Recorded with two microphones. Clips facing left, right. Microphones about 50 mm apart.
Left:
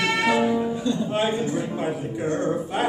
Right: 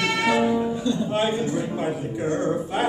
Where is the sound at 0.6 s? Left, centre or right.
Centre.